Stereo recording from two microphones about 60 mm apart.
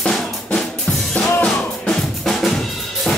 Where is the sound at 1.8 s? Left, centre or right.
Centre.